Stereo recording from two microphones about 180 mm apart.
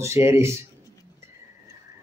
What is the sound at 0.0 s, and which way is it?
Speech, 15° right (ahead or behind).